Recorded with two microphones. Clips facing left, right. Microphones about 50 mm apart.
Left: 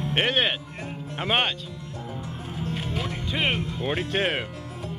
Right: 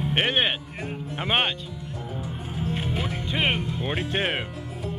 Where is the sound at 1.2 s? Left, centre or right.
Centre.